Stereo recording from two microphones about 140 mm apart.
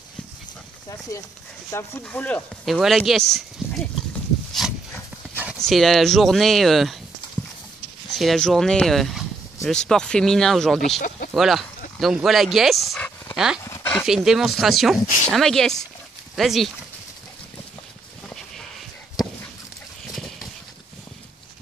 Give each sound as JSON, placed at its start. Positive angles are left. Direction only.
{"t": 1.7, "sound": "speech", "side_deg": 20}
{"t": 2.6, "sound": "speech", "side_deg": 0}
{"t": 5.3, "sound": "clip-clop", "side_deg": -10}
{"t": 5.6, "sound": "speech", "side_deg": 0}
{"t": 8.1, "sound": "speech", "side_deg": 0}
{"t": 11.0, "sound": "speech", "side_deg": 90}
{"t": 11.3, "sound": "speech", "side_deg": 0}
{"t": 13.7, "sound": "a sound", "side_deg": 20}
{"t": 14.0, "sound": "speech", "side_deg": -5}